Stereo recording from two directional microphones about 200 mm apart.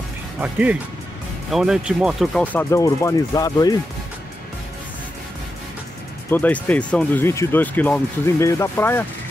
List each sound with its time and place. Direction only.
0.4 s speech: 5° right (ahead or behind)
2.7 s speech: 15° left (ahead or behind)
6.3 s speech: 10° left (ahead or behind)